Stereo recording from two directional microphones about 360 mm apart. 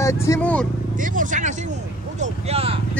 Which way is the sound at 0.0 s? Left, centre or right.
Centre.